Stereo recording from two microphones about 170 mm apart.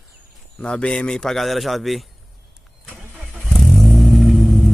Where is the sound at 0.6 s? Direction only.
5° left (ahead or behind).